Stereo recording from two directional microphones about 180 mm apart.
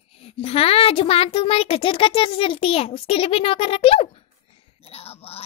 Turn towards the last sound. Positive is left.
turn(degrees=35)  # may be behind; listen again after turning